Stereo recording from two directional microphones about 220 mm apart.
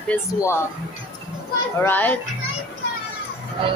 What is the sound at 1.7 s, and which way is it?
Speech, 10° left (ahead or behind).